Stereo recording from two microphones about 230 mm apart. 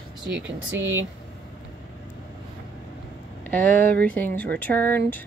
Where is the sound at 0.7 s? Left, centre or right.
Centre.